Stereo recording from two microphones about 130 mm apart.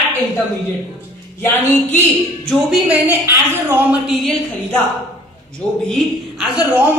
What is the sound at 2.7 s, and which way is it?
A man's voice, 10° right (ahead or behind).